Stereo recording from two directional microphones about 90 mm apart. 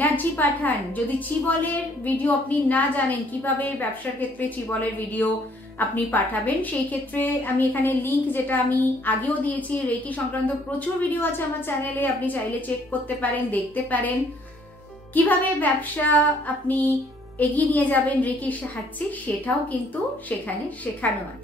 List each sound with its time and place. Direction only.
0.0 s a woman's voice: 20° left (ahead or behind)
15.1 s a woman's voice: 20° left (ahead or behind)